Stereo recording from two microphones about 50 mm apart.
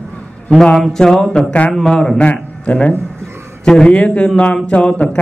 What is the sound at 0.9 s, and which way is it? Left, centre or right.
A man's voice, centre.